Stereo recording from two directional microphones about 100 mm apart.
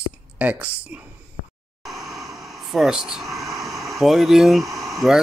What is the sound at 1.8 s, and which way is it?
Air conditioning, centre (ahead or behind).